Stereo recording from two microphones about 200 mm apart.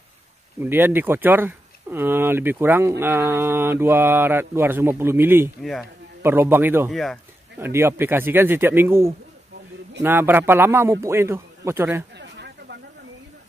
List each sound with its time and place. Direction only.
0.6 s speech: 10° right (ahead or behind)
5.6 s speech: centre (ahead or behind)
6.2 s speech: 10° right (ahead or behind)
6.9 s speech: centre (ahead or behind)
7.5 s speech: 10° right (ahead or behind)
12.2 s a sound: 55° right (ahead or behind)